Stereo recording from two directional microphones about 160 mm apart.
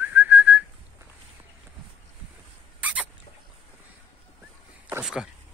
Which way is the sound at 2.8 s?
10° right (ahead or behind).